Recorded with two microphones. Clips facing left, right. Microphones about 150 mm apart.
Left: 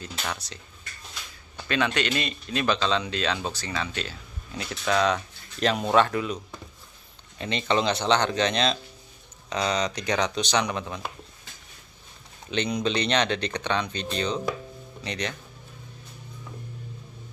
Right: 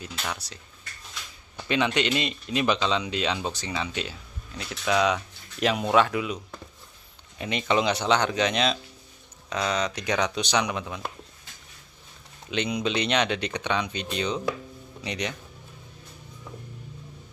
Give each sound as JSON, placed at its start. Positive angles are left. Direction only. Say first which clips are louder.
{"t": 0.2, "sound": "speech", "louder": "left 1 dB", "side_deg": -5}
{"t": 1.7, "sound": "speech", "louder": "right 1 dB", "side_deg": -20}
{"t": 4.6, "sound": "speech", "louder": "even", "side_deg": -5}
{"t": 12.4, "sound": "speech", "louder": "left 1 dB", "side_deg": -5}